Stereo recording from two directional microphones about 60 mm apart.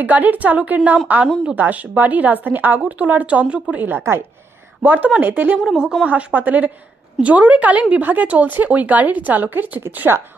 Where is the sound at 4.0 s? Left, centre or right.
Right.